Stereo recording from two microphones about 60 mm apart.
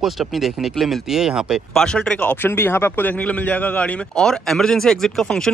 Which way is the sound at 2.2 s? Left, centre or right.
Left.